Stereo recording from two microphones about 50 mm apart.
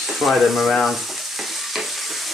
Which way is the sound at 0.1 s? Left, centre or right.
Centre.